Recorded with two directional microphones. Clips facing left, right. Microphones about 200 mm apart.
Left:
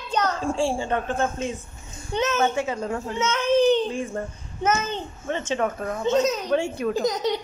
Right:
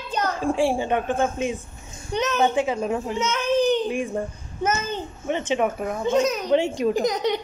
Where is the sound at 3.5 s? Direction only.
15° right (ahead or behind).